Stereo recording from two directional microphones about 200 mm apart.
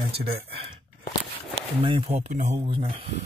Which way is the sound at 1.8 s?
25° right (ahead or behind).